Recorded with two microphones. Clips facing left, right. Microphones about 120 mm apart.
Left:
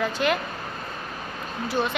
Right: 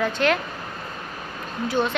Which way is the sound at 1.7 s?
5° left (ahead or behind).